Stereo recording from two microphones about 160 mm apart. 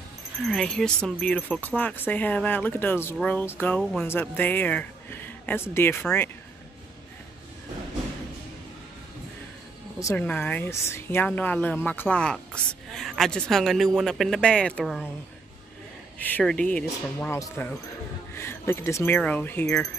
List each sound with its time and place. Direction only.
0.4 s speech: centre (ahead or behind)
3.8 s speech: centre (ahead or behind)
4.1 s speech: 10° left (ahead or behind)
9.9 s speech: 20° left (ahead or behind); by 15.0 s 5° left (ahead or behind)
16.2 s speech: 10° left (ahead or behind)